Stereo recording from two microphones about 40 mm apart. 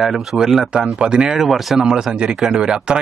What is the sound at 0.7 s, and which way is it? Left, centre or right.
Speech, right.